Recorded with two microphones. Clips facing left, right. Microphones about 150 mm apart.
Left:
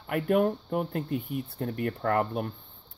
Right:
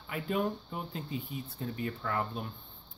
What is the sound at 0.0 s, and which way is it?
Speech, 60° left (ahead or behind).